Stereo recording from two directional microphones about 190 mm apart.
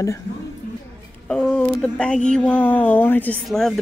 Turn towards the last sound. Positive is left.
turn(degrees=0)  # may be behind; listen again after turning